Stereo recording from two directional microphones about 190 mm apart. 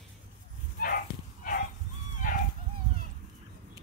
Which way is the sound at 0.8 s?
50° left (ahead or behind).